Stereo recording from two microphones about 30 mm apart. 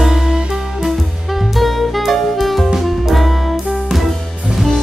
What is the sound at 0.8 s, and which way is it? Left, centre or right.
Music, centre.